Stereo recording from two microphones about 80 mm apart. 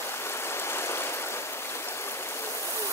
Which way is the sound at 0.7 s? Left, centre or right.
Left.